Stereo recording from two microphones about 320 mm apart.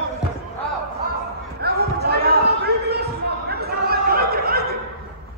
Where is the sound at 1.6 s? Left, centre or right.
Right.